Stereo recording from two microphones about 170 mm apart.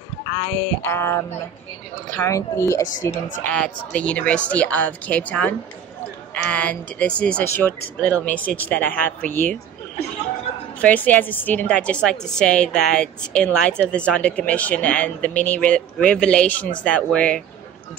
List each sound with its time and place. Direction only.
0.8 s speech: 15° left (ahead or behind)
3.4 s speech: 5° left (ahead or behind)
10.5 s bow-wow: 40° left (ahead or behind)
10.8 s speech: 10° left (ahead or behind)